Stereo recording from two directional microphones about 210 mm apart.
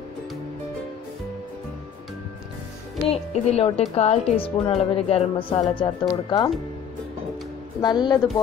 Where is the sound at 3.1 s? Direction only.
30° left (ahead or behind).